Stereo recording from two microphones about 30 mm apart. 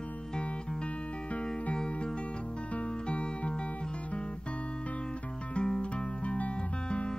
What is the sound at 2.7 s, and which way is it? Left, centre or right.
Music, left.